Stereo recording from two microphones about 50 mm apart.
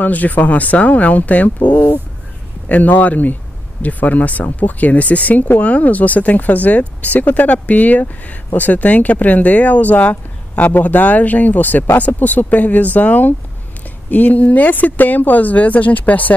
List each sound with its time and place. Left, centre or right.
0.0 s speech: left